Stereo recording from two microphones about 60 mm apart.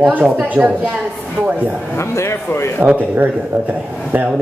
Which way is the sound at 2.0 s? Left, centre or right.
Left.